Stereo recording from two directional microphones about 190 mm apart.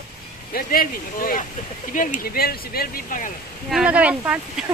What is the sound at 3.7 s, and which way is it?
Speech, 5° right (ahead or behind).